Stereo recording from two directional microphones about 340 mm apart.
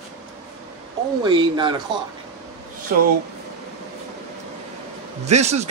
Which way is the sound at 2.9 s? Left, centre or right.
Right.